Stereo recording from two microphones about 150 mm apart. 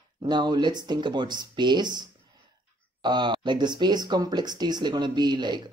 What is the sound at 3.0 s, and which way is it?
Speech, 30° right (ahead or behind).